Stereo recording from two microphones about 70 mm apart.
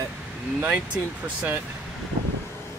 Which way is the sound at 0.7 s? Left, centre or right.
Centre.